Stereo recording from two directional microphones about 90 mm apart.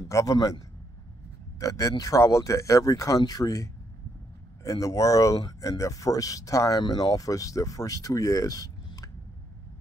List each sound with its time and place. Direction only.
0.1 s speech: 40° left (ahead or behind)
6.8 s speech: 50° left (ahead or behind)